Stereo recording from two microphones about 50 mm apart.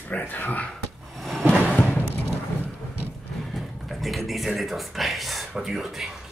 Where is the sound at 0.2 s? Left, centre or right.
Left.